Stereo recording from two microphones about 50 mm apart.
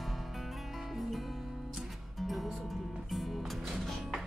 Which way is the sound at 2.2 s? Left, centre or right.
Centre.